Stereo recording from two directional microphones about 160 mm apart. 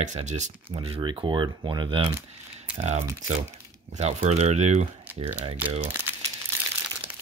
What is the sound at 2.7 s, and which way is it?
Speech, 45° right (ahead or behind).